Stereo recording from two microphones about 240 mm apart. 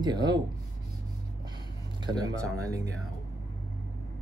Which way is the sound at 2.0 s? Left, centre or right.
Centre.